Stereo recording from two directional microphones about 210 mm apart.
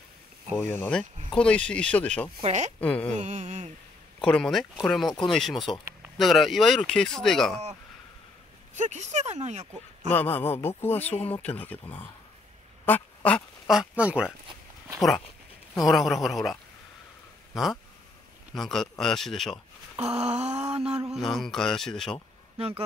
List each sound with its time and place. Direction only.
0.6 s speech: 10° left (ahead or behind)
2.4 s speech: 35° right (ahead or behind)
2.8 s speech: 5° left (ahead or behind)
3.2 s speech: 35° right (ahead or behind)
4.2 s speech: 5° left (ahead or behind)
8.7 s speech: 35° right (ahead or behind)
10.1 s speech: 10° left (ahead or behind)
12.8 s duck: 5° left (ahead or behind)
15.0 s speech: centre (ahead or behind)
18.5 s speech: centre (ahead or behind)
20.3 s speech: 30° right (ahead or behind)
20.8 s speech: 5° right (ahead or behind)
22.6 s speech: 30° right (ahead or behind)